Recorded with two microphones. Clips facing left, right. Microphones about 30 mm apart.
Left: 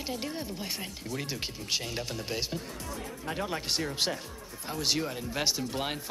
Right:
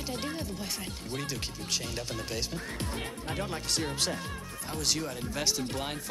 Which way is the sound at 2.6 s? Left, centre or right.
Right.